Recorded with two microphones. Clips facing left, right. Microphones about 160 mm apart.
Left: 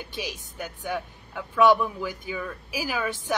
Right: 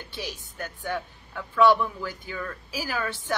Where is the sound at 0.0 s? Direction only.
15° left (ahead or behind).